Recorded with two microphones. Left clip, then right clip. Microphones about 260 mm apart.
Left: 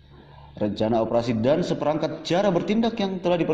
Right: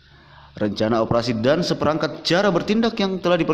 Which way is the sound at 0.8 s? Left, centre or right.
Centre.